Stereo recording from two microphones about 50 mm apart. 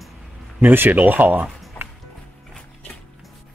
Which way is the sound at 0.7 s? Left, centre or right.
Right.